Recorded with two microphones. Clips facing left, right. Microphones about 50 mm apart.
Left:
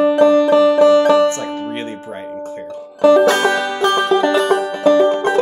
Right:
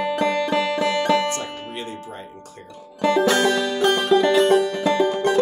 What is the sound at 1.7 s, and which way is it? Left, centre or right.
Speech, left.